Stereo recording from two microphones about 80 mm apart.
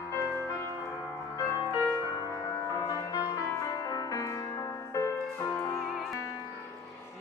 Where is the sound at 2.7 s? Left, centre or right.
Left.